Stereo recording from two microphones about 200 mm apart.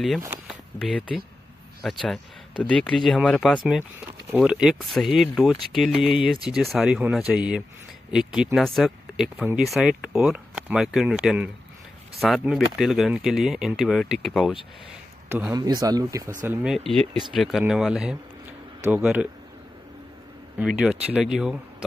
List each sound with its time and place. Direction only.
0.5 s speech: centre (ahead or behind)
15.2 s speech: 10° right (ahead or behind)
16.4 s speech: centre (ahead or behind)
20.5 s speech: 5° right (ahead or behind)